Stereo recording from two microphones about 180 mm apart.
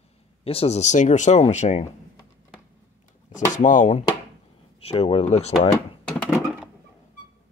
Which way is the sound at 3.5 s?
45° left (ahead or behind).